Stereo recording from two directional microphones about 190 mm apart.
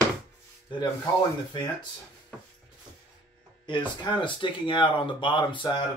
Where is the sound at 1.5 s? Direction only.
25° left (ahead or behind).